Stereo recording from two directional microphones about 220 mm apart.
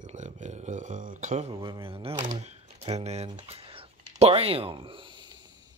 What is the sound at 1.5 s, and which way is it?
Speech, 20° right (ahead or behind).